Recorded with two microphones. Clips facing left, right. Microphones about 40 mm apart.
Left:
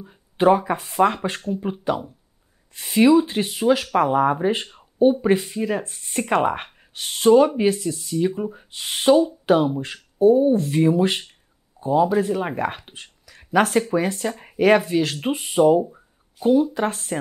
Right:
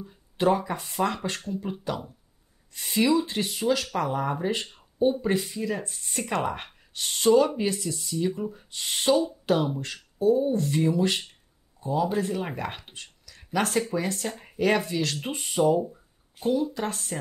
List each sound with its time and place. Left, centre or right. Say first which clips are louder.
0.0 s speech: left 6 dB; left
4.7 s a sound: left 7 dB; left
5.6 s speech: left 6 dB; left
7.0 s speech: left 5 dB; centre
7.8 s speech: left 6 dB; centre
8.1 s speech: left 5 dB; left
15.9 s a sound: left 2 dB; left
16.7 s speech: left 7 dB; left